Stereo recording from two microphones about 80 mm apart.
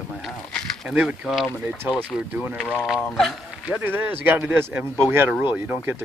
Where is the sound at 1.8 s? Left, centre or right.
Right.